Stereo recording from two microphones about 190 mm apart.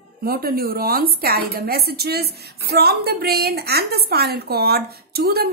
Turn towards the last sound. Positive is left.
turn(degrees=-55)  # may be behind; listen again after turning